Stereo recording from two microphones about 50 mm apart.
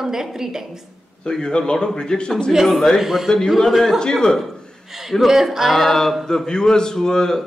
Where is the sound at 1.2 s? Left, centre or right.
Centre.